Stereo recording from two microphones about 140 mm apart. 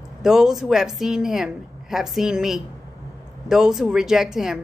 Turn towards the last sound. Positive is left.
turn(degrees=-5)  # may be behind; listen again after turning